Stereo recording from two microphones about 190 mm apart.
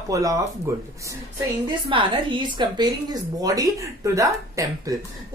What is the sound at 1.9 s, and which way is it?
A woman's voice, 25° right (ahead or behind).